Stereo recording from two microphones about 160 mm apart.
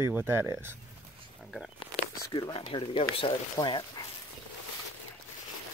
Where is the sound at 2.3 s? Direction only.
25° left (ahead or behind).